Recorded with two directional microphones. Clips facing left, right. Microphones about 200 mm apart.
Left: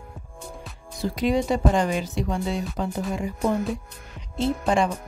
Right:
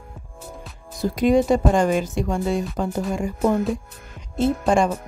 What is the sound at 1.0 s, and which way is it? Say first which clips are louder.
Music: right 5 dB; 50° right (ahead or behind).